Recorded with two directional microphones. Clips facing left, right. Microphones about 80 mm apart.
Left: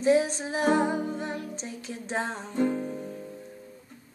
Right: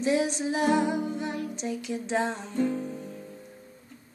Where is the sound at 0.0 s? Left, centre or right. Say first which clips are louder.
Left 2 dB; left.